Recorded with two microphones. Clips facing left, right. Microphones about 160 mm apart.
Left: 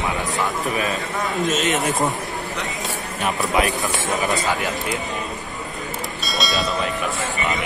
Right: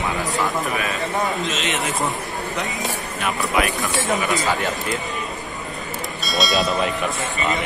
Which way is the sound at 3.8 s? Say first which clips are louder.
Right 1 dB; centre (ahead or behind).